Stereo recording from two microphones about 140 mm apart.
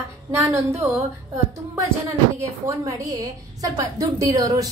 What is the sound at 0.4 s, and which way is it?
Speech, 20° right (ahead or behind).